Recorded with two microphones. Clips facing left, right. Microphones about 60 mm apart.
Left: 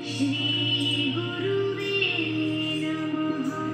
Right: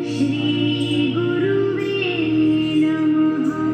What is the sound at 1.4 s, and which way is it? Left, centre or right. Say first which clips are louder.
Music: right 5 dB; right.